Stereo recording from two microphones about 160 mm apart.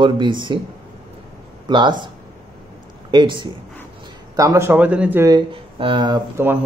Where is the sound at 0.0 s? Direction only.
30° right (ahead or behind).